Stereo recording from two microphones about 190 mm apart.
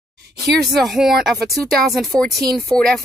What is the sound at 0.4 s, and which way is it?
Speech, centre (ahead or behind).